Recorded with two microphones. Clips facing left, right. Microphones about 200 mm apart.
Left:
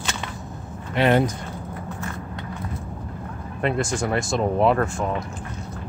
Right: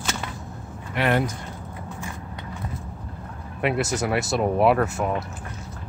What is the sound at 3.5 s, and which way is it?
Speech, 5° right (ahead or behind).